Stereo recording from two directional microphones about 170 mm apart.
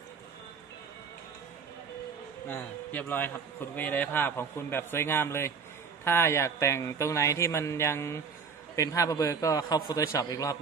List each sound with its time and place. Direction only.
2.4 s a man's voice: 10° left (ahead or behind)